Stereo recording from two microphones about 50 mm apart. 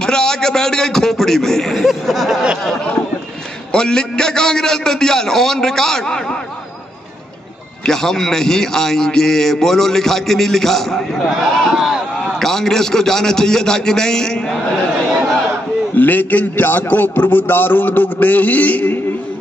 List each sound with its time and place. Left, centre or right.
0.0 s a man's voice: centre
3.7 s a man's voice: centre
7.8 s a man's voice: centre
11.2 s speech: centre
12.4 s a man's voice: centre
15.9 s a man's voice: left